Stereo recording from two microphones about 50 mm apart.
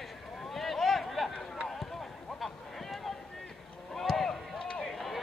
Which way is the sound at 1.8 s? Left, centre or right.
Centre.